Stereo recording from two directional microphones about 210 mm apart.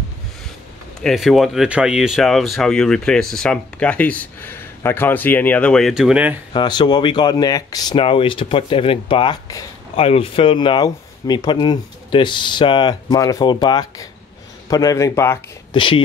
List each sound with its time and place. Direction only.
1.0 s speech: centre (ahead or behind)
6.5 s a man's voice: 20° left (ahead or behind)
15.7 s speech: 25° left (ahead or behind)